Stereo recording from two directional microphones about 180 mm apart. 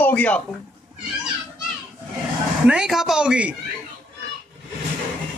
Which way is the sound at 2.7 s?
5° right (ahead or behind).